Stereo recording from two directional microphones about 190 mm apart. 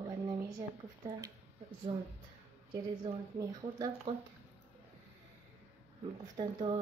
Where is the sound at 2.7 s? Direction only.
20° right (ahead or behind).